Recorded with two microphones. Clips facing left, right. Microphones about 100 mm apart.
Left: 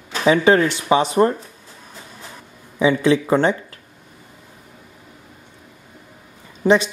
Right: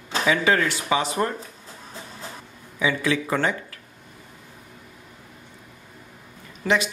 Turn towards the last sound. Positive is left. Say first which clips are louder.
# left 7 dB
turn(degrees=30)  # may be behind; listen again after turning